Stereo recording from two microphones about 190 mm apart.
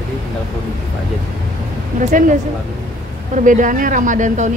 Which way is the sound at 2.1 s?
45° right (ahead or behind).